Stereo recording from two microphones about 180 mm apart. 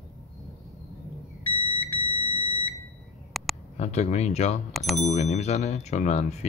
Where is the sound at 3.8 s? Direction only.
40° left (ahead or behind).